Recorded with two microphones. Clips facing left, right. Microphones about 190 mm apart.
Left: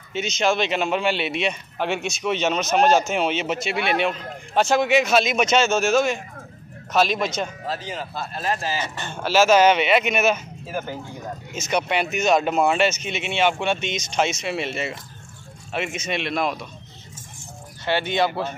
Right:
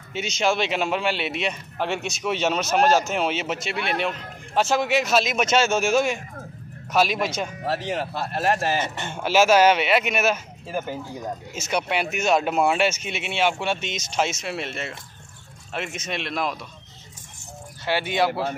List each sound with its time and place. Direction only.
0.1 s a man's voice: 10° right (ahead or behind)
7.6 s speech: 70° right (ahead or behind)
8.8 s a man's voice: 20° right (ahead or behind); by 16.5 s centre (ahead or behind)
17.8 s speech: 5° right (ahead or behind)